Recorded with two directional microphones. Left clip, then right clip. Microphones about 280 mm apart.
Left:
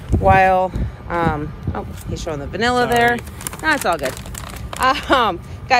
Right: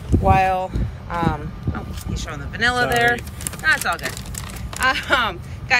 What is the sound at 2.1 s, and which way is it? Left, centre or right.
A woman's voice, centre.